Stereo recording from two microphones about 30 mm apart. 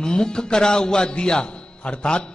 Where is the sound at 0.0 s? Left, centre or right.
Left.